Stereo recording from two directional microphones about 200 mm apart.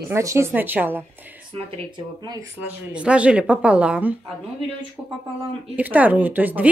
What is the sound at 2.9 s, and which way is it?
Speech, 5° right (ahead or behind).